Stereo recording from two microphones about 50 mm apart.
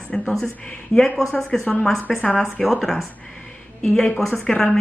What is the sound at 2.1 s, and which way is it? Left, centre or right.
Speech, centre.